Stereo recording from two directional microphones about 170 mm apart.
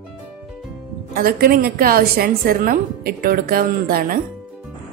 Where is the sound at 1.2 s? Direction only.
60° right (ahead or behind).